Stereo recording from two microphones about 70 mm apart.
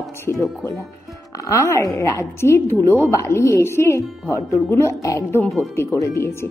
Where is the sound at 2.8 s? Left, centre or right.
Right.